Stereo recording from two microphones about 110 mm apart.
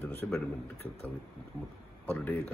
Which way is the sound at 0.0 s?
20° left (ahead or behind).